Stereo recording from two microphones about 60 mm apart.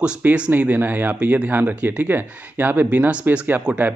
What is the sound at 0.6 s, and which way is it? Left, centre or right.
Speech, right.